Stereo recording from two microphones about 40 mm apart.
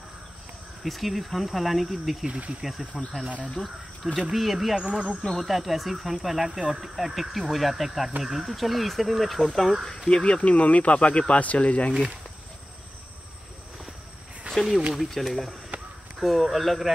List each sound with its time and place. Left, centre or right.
0.8 s speech: centre
4.7 s speech: centre
5.3 s speech: centre
10.0 s speech: left
14.5 s speech: centre
15.7 s a sound: right
16.2 s speech: centre